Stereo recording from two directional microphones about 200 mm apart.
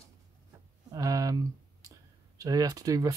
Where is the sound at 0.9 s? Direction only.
15° right (ahead or behind).